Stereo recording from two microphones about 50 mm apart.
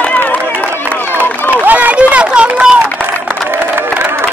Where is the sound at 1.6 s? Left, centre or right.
Right.